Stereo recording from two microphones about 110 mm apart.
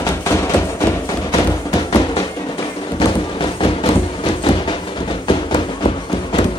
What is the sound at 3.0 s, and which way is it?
Music, 50° left (ahead or behind).